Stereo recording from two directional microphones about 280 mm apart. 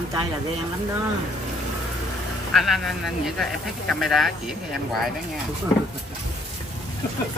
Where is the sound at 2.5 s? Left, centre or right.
Centre.